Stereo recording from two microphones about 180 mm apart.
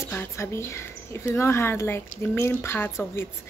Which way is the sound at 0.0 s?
15° left (ahead or behind).